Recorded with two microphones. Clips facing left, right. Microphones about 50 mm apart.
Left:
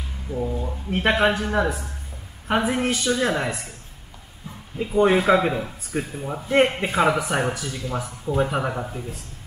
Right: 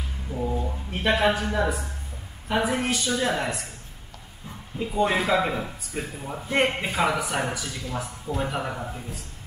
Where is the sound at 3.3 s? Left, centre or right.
Centre.